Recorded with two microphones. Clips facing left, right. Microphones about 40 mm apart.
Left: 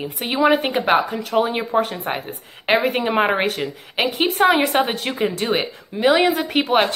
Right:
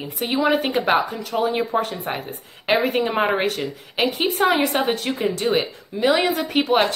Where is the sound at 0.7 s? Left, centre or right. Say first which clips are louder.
Left 1 dB; centre.